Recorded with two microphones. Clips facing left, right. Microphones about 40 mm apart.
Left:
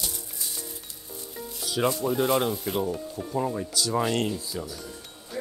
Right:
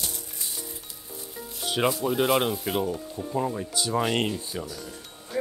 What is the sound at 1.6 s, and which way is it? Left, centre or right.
Rub, right.